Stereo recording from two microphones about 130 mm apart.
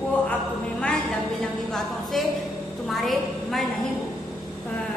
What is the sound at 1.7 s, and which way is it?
A woman's voice, centre (ahead or behind).